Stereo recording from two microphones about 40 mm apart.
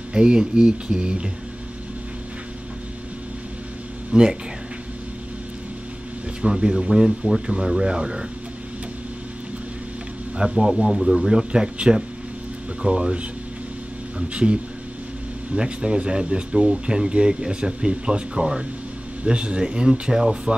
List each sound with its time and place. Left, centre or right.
0.1 s speech: right
4.1 s speech: centre
6.4 s speech: centre
10.3 s speech: right
11.0 s speech: centre